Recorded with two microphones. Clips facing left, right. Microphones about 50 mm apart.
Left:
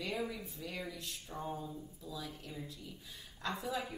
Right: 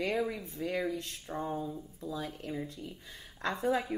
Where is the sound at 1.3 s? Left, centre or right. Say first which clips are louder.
Right 8 dB; right.